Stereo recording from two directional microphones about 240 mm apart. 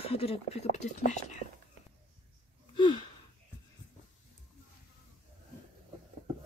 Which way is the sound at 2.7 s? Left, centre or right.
Centre.